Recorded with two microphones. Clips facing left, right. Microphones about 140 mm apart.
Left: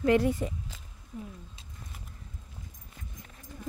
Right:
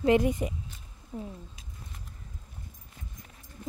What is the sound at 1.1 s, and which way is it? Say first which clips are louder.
Speech: right 3 dB; 45° right (ahead or behind).